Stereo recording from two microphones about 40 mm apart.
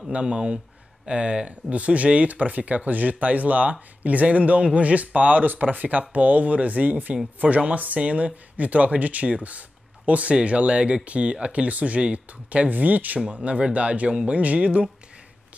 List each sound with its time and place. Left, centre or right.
0.1 s speech: right
5.4 s speech: right